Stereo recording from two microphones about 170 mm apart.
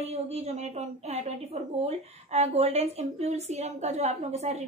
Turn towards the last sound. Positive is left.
turn(degrees=-40)  # may be behind; listen again after turning